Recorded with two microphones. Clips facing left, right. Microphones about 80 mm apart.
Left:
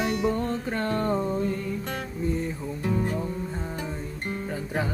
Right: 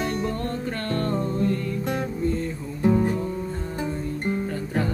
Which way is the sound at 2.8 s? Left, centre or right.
Right.